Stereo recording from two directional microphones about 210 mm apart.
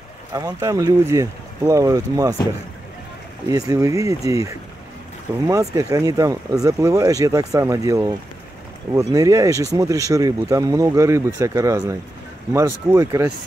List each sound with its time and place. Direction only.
0.3 s speech: 20° right (ahead or behind)
3.4 s speech: 15° right (ahead or behind)